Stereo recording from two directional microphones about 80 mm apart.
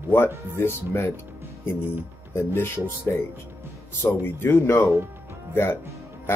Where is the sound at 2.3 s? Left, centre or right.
Left.